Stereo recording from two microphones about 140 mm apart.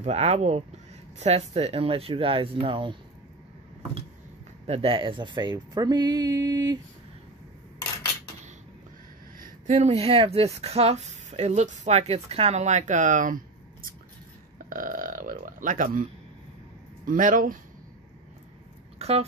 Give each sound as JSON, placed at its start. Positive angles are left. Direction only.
{"t": 0.0, "sound": "speech", "side_deg": -50}
{"t": 4.6, "sound": "speech", "side_deg": -45}
{"t": 9.4, "sound": "speech", "side_deg": -60}
{"t": 14.7, "sound": "speech", "side_deg": -75}
{"t": 18.9, "sound": "a sound", "side_deg": -45}